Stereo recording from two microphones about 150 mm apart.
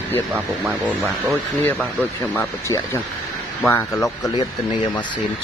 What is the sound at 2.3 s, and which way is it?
Speech, 20° left (ahead or behind).